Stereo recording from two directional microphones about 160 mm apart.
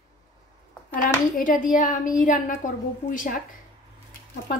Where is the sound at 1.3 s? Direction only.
60° left (ahead or behind).